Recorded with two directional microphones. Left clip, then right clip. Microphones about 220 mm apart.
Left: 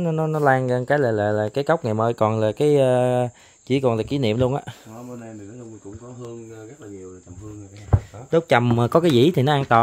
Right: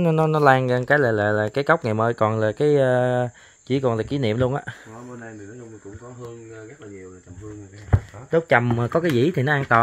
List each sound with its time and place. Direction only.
0.0 s speech: 15° right (ahead or behind)
0.7 s speech: 5° left (ahead or behind)
8.3 s speech: 20° left (ahead or behind)